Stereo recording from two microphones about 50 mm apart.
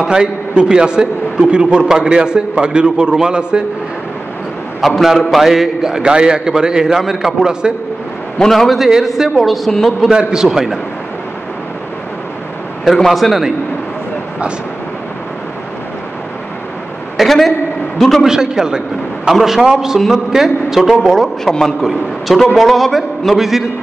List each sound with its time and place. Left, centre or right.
0.0 s a man's voice: centre
4.8 s a man's voice: centre
8.5 s a man's voice: centre
10.1 s a man's voice: centre
12.9 s a man's voice: centre
17.2 s a man's voice: centre
18.2 s a man's voice: centre